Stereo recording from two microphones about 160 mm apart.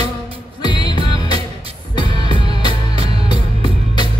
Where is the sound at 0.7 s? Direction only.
30° left (ahead or behind).